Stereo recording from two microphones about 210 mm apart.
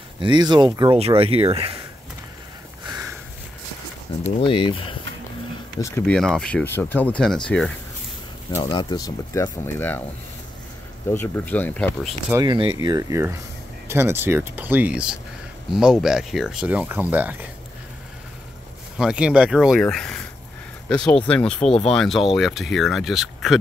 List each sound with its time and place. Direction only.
0.2 s speech: 20° right (ahead or behind)
4.4 s speech: 25° left (ahead or behind)
5.8 s speech: 10° left (ahead or behind)
8.5 s speech: 15° left (ahead or behind)
11.1 s speech: 10° left (ahead or behind)
12.3 s speech: 20° right (ahead or behind)
18.9 s speech: 5° right (ahead or behind)